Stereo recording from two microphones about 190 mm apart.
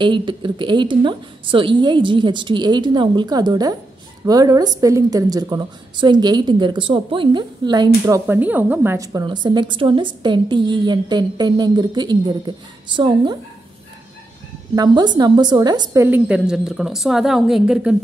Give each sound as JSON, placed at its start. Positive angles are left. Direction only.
{"t": 0.0, "sound": "a woman's voice", "side_deg": -25}
{"t": 8.3, "sound": "a woman's voice", "side_deg": -10}
{"t": 14.8, "sound": "a woman's voice", "side_deg": -20}